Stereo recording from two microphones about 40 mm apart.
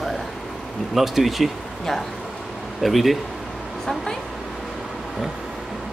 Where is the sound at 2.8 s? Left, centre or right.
Centre.